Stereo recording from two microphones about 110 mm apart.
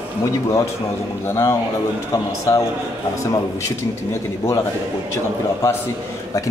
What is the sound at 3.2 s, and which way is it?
Speech, 30° left (ahead or behind).